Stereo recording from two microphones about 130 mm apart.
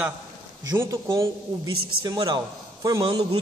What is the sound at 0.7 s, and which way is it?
A man's voice, 25° right (ahead or behind).